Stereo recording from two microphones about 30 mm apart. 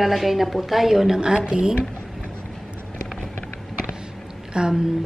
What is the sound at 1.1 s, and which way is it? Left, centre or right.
Speech, right.